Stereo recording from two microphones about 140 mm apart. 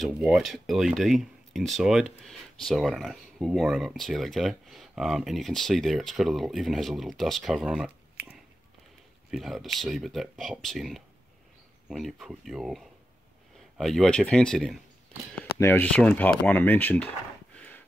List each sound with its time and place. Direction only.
0.0 s speech: centre (ahead or behind)
15.6 s speech: 15° left (ahead or behind)